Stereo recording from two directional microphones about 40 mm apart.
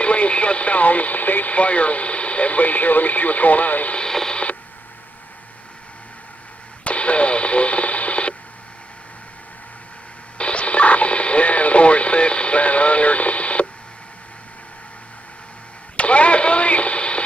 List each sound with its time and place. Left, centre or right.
0.0 s speech: left
3.9 s radio: centre
6.8 s radio: left
10.3 s radio: left
16.0 s radio: left